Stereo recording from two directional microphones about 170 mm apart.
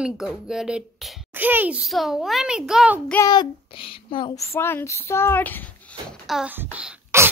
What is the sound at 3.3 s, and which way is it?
Child singing, 30° left (ahead or behind).